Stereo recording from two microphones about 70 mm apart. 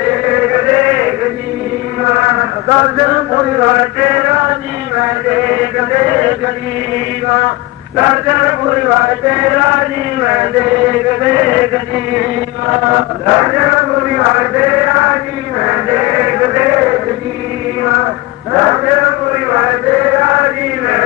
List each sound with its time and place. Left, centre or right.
0.0 s chant: centre
2.0 s a man's voice: right
4.9 s chant: centre
7.3 s a man's voice: centre
15.6 s a sound: centre
17.8 s chant: right